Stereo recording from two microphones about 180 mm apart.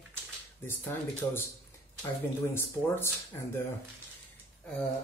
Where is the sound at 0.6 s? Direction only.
10° left (ahead or behind).